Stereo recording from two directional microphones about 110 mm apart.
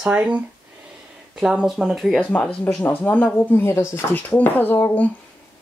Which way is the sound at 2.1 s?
10° left (ahead or behind).